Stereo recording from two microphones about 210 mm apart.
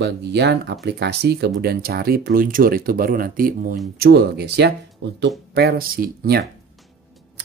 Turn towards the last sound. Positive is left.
turn(degrees=-45)  # may be behind; listen again after turning